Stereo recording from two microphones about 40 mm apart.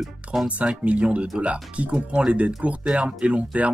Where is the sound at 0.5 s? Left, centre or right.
Right.